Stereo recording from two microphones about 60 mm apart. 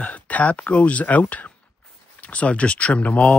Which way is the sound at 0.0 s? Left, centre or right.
Left.